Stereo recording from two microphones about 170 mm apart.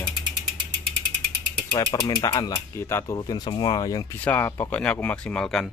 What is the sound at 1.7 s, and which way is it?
Speech, 25° left (ahead or behind).